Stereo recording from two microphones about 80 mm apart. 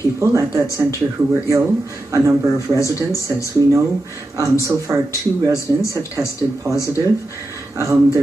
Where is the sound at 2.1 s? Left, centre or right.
Right.